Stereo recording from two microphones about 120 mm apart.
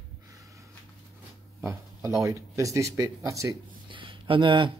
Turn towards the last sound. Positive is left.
turn(degrees=-45)  # may be behind; listen again after turning